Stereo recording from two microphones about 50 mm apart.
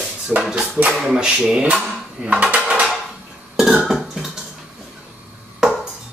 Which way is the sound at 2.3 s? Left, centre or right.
Right.